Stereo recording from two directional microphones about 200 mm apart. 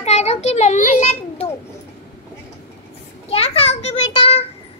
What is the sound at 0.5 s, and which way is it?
Children playing, 35° left (ahead or behind).